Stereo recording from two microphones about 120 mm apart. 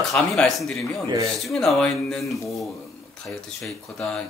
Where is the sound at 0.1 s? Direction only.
5° left (ahead or behind).